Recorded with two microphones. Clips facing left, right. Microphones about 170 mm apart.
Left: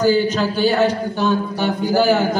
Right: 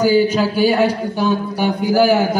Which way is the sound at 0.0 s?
10° right (ahead or behind).